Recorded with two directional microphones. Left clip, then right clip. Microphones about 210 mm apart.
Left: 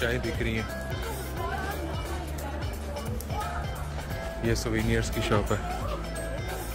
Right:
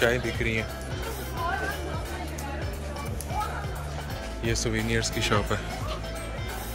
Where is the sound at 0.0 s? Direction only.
10° left (ahead or behind).